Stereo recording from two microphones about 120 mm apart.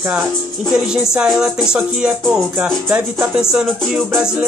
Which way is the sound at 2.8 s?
10° right (ahead or behind).